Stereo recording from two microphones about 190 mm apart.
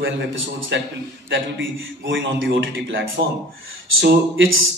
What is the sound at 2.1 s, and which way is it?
Speech, 75° right (ahead or behind).